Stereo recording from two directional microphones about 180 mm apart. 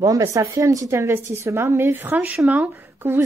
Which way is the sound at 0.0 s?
20° right (ahead or behind).